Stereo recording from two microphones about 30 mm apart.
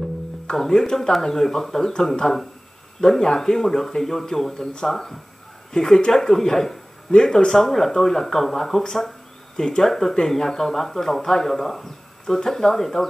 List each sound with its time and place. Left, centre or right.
0.6 s a man's voice: centre
9.8 s a man's voice: centre